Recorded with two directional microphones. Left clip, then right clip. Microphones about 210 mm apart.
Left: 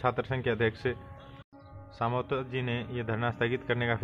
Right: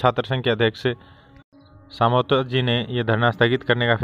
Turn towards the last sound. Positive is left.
turn(degrees=-45)  # may be behind; listen again after turning